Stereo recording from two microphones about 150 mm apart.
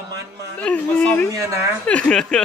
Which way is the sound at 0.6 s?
10° left (ahead or behind).